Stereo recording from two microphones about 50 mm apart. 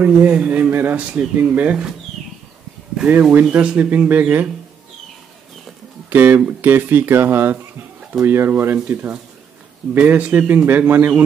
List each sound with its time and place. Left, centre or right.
0.0 s speech: right
0.9 s speech: right
3.1 s speech: right
3.5 s speech: right
4.1 s speech: right
6.0 s speech: right